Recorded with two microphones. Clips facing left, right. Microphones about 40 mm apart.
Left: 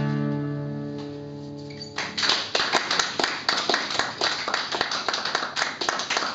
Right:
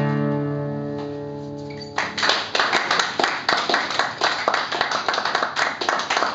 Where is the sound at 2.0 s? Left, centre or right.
Right.